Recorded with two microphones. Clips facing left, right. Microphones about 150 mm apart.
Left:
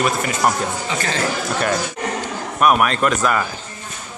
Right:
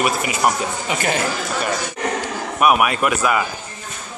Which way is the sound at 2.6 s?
10° right (ahead or behind).